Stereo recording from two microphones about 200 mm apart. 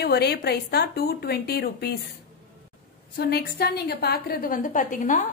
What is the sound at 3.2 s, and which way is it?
A woman's voice, 50° left (ahead or behind).